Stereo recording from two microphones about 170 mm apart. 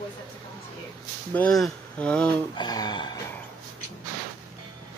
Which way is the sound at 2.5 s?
25° left (ahead or behind).